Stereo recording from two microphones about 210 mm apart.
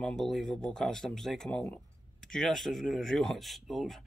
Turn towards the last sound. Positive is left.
turn(degrees=0)  # may be behind; listen again after turning